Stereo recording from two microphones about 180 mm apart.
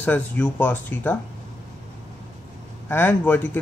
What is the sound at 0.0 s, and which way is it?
Speech, 10° left (ahead or behind).